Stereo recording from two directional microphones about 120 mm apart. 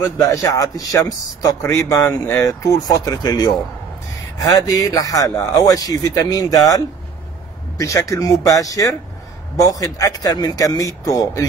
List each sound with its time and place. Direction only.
0.0 s speech: 25° left (ahead or behind)